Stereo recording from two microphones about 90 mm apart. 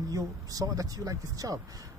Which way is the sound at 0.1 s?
40° right (ahead or behind).